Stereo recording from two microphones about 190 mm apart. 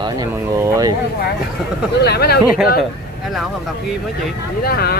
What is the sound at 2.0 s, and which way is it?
Speech, 60° left (ahead or behind).